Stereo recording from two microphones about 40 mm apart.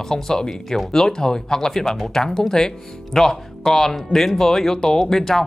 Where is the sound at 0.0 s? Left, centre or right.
Centre.